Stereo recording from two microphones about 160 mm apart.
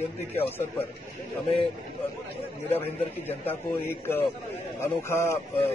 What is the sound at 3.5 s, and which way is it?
Speech, 15° left (ahead or behind).